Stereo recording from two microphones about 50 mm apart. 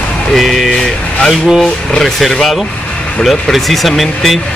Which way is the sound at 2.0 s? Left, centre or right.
Centre.